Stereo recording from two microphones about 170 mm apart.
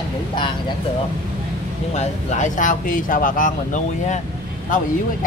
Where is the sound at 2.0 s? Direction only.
45° left (ahead or behind).